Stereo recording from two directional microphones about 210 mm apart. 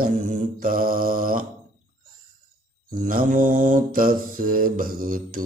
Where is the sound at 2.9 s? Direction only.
40° right (ahead or behind).